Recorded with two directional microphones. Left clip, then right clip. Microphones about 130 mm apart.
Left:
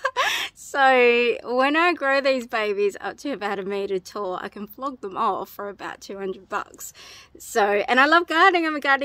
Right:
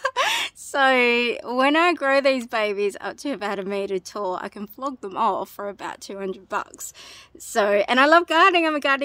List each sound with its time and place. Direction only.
0.0 s speech: 25° right (ahead or behind)